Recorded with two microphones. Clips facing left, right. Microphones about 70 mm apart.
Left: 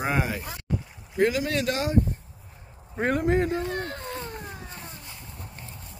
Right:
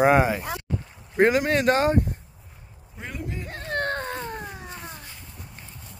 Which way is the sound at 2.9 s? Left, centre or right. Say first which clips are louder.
Left 13 dB; left.